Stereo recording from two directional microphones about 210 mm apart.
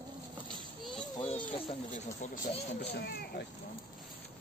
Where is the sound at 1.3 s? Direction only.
25° left (ahead or behind).